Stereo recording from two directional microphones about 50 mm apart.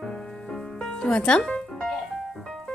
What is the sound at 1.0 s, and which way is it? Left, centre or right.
Music, centre.